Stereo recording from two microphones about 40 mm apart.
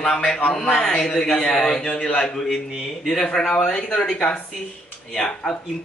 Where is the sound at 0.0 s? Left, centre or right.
Centre.